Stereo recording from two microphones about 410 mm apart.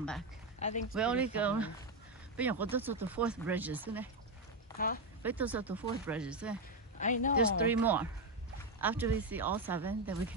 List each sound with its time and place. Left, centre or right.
0.6 s speech: centre
0.9 s speech: centre
4.7 s speech: left
5.2 s speech: centre
7.0 s speech: centre
7.7 s speech: centre